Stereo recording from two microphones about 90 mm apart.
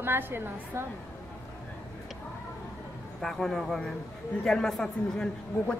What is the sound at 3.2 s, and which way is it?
A man's voice, 5° left (ahead or behind).